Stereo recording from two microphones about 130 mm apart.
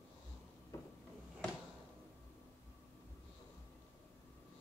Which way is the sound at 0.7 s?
20° left (ahead or behind).